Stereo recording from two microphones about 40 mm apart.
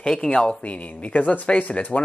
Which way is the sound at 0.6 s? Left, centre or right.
Left.